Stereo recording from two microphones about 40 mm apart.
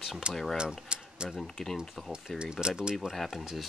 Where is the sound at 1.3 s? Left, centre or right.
Centre.